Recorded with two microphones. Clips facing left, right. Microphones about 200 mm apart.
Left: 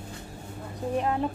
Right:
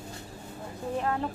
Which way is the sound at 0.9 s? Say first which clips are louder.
Left 3 dB; 15° left (ahead or behind).